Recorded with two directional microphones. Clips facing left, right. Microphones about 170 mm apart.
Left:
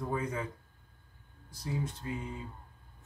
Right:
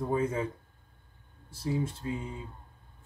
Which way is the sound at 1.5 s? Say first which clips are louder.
Right 5 dB; 30° right (ahead or behind).